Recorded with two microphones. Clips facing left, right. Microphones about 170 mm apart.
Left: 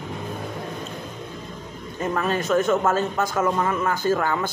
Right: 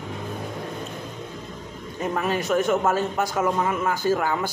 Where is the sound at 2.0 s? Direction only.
15° right (ahead or behind).